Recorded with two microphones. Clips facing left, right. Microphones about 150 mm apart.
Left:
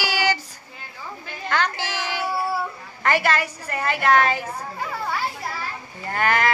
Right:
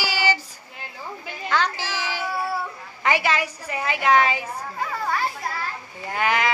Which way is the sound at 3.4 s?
5° right (ahead or behind).